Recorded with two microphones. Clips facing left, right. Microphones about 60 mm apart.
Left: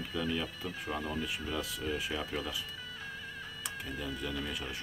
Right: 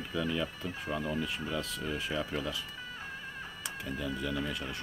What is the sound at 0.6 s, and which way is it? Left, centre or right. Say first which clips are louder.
Speech: right 2 dB; right.